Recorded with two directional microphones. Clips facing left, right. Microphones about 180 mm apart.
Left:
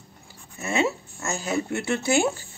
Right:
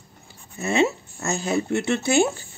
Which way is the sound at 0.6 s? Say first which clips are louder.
Right 4 dB; 25° right (ahead or behind).